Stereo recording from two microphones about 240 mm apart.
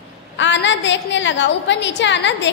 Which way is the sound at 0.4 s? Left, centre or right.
Left.